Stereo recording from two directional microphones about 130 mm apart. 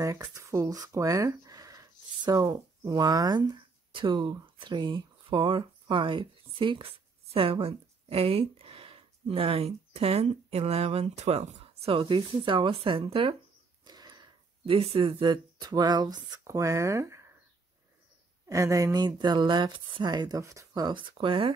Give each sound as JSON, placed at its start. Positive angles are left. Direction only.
{"t": 0.0, "sound": "speech", "side_deg": -25}
{"t": 13.8, "sound": "a sound", "side_deg": -30}
{"t": 14.8, "sound": "speech", "side_deg": -45}
{"t": 18.5, "sound": "speech", "side_deg": -25}